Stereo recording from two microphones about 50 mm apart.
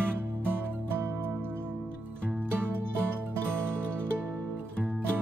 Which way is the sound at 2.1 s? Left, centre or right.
Right.